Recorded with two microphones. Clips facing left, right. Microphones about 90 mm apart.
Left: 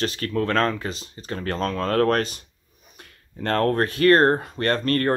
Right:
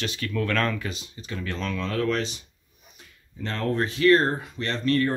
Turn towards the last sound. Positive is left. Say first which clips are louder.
# left 3 dB
turn(degrees=50)  # may be behind; listen again after turning